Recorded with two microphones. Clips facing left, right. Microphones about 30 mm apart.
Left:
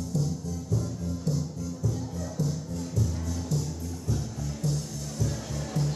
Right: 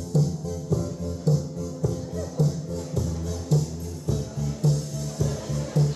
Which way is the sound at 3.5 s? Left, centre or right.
Right.